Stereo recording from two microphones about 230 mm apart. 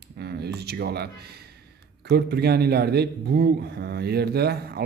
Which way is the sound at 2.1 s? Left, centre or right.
Right.